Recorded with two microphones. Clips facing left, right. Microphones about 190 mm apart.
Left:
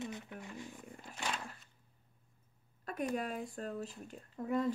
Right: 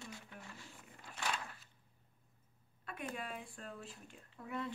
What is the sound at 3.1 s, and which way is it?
Speech, 40° left (ahead or behind).